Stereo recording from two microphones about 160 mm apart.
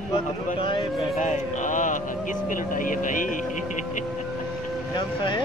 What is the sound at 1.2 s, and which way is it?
Speech, 50° left (ahead or behind).